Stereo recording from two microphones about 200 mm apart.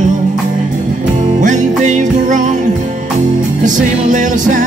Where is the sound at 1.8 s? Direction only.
40° right (ahead or behind).